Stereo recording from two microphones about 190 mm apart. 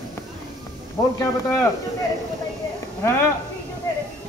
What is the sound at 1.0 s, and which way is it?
Speech, 15° left (ahead or behind).